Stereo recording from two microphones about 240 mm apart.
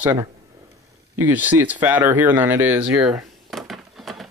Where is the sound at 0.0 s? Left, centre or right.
Centre.